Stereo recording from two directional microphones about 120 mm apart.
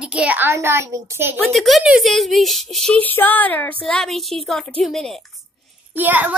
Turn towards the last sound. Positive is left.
turn(degrees=-15)  # may be behind; listen again after turning